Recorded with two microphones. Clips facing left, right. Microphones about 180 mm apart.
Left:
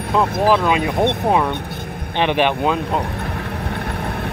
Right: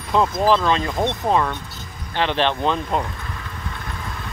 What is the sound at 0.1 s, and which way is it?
Speech, 5° left (ahead or behind).